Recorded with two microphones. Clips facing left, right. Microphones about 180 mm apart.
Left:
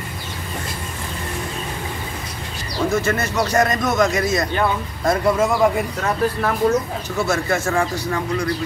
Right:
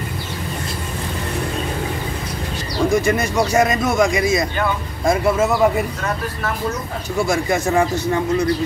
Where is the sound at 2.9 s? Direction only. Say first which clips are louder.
Right 3 dB; 15° right (ahead or behind).